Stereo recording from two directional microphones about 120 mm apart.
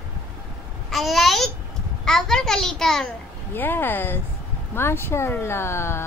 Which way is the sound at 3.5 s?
15° left (ahead or behind).